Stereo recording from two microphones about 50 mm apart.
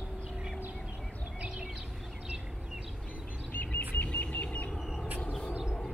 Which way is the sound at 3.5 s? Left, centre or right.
Left.